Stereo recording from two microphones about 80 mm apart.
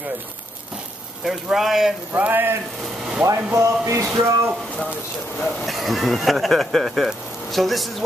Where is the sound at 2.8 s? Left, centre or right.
Centre.